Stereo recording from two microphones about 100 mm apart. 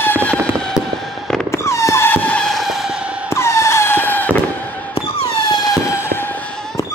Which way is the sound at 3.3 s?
30° left (ahead or behind).